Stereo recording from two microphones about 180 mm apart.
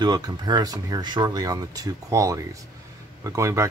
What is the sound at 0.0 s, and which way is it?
Speech, 25° right (ahead or behind).